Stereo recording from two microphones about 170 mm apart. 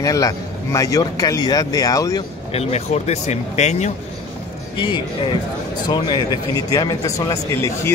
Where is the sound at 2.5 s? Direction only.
40° left (ahead or behind).